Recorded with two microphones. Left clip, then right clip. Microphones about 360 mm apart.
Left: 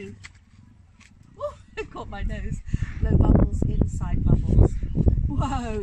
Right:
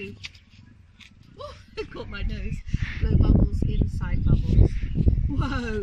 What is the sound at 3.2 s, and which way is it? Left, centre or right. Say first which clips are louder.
Speech: left 4 dB; left.